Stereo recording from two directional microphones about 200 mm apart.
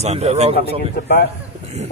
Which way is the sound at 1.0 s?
55° left (ahead or behind).